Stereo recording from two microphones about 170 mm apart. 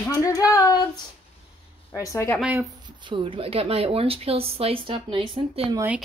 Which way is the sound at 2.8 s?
30° right (ahead or behind).